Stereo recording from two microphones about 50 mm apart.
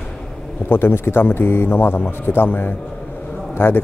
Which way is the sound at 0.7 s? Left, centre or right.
Left.